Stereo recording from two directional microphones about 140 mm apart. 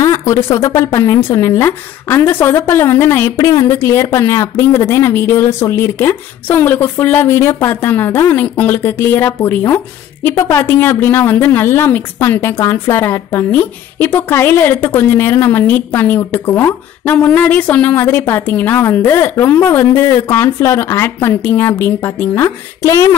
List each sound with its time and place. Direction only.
0.0 s speech: 20° left (ahead or behind)